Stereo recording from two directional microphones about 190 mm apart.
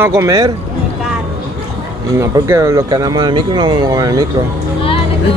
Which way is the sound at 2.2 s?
15° right (ahead or behind).